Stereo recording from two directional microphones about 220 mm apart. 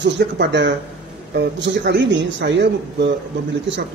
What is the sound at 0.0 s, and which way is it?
A man's voice, 55° right (ahead or behind).